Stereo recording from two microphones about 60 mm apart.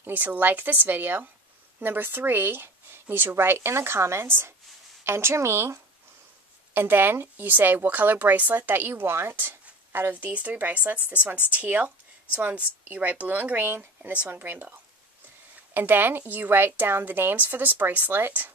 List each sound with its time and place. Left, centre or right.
0.0 s a woman's voice: right
6.7 s a woman's voice: right